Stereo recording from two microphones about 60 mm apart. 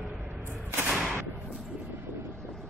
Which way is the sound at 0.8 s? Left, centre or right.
Centre.